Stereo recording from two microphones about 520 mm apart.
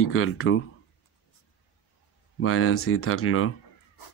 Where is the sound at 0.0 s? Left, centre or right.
Left.